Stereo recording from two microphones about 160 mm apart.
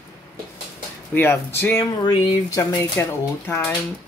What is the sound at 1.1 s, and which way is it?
Speech, 15° left (ahead or behind).